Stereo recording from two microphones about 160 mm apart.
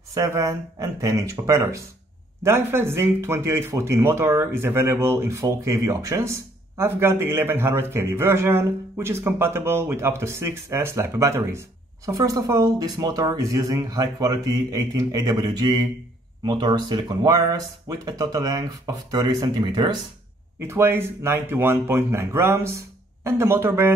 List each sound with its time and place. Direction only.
0.1 s a man's voice: 20° right (ahead or behind)
20.6 s a man's voice: 15° right (ahead or behind)